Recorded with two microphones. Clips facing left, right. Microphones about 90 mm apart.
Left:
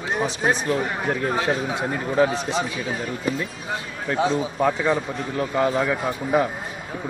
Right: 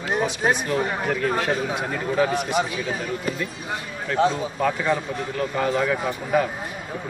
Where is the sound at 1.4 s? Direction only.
25° left (ahead or behind).